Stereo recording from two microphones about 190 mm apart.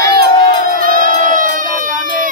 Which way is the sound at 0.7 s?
45° right (ahead or behind).